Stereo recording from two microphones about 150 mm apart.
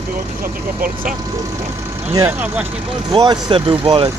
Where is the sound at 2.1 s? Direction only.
15° right (ahead or behind).